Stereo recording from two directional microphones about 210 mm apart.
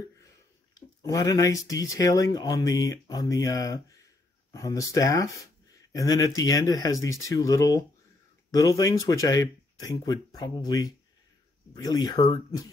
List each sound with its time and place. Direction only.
0.7 s speech: 15° left (ahead or behind)